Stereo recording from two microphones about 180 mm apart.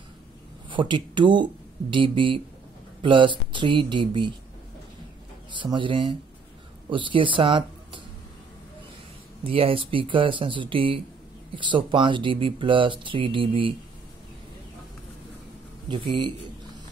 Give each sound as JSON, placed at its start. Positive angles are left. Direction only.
{"t": 0.7, "sound": "speech", "side_deg": -25}
{"t": 5.5, "sound": "speech", "side_deg": -25}
{"t": 9.4, "sound": "speech", "side_deg": -30}
{"t": 15.9, "sound": "speech", "side_deg": -25}